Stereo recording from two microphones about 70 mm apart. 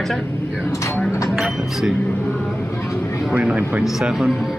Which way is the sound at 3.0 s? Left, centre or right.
Centre.